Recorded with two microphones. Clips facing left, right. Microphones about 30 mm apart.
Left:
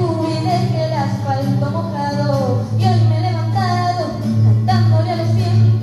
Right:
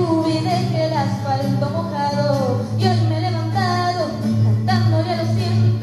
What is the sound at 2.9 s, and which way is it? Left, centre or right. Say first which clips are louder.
Music: left 2 dB; centre.